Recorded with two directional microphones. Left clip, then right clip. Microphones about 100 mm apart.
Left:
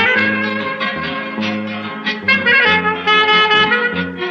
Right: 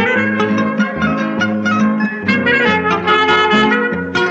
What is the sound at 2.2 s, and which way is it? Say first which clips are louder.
Music: left 2 dB; 45° right (ahead or behind).